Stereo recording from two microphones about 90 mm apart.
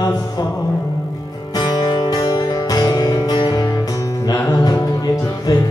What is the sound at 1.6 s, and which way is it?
Music, 50° left (ahead or behind).